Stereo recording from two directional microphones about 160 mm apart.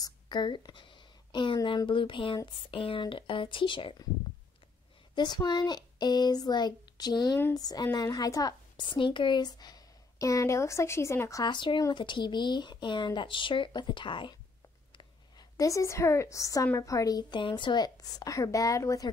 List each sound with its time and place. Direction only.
0.0 s speech: 25° left (ahead or behind)
5.1 s a woman's voice: 25° left (ahead or behind)